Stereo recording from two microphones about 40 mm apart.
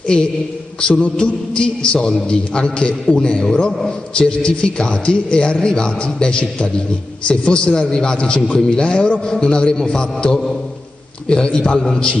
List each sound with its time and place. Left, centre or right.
0.0 s a man's voice: left
0.7 s a sound: left
1.0 s a man's voice: left